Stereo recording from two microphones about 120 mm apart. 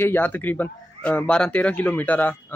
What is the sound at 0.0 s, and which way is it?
A man's voice, 15° left (ahead or behind).